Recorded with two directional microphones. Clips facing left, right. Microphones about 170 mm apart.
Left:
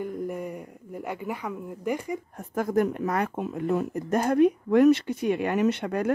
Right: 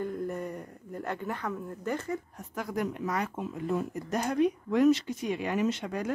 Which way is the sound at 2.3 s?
50° left (ahead or behind).